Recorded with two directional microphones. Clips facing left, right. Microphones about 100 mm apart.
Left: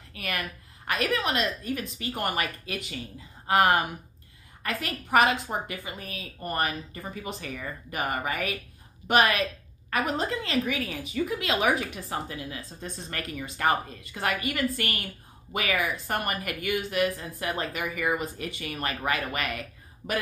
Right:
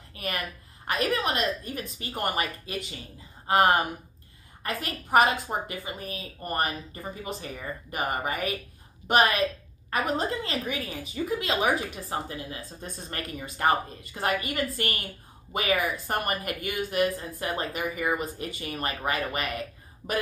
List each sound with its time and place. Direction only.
0.1 s a sound: 35° right (ahead or behind)
0.8 s speech: 35° right (ahead or behind)
20.0 s speech: 5° right (ahead or behind)